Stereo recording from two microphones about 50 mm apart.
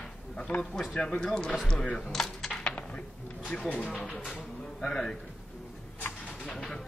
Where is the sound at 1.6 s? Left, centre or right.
Centre.